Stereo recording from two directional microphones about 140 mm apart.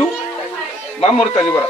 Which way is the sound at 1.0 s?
35° left (ahead or behind).